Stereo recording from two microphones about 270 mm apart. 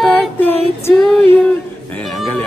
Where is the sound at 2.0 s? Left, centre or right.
Centre.